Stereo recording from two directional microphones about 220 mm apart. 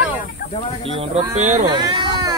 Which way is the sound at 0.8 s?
25° right (ahead or behind).